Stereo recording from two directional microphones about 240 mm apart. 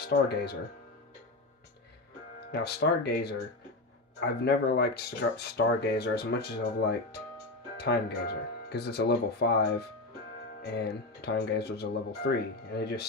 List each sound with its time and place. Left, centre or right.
0.0 s speech: left
2.5 s speech: left
7.7 s speech: left